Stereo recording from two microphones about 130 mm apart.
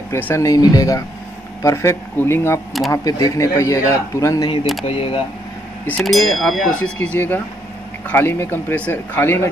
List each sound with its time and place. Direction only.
0.1 s speech: 20° left (ahead or behind)
4.8 s speech: 45° left (ahead or behind)
5.9 s speech: 5° left (ahead or behind)